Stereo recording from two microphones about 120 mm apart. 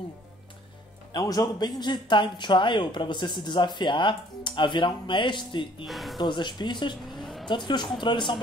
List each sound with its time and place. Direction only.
1.1 s speech: 30° left (ahead or behind)
5.9 s speech: centre (ahead or behind)
6.1 s speech: 40° left (ahead or behind)
7.1 s vehicle: centre (ahead or behind)
7.4 s speech: 40° left (ahead or behind)